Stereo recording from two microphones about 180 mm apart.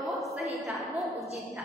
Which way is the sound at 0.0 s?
Centre (ahead or behind).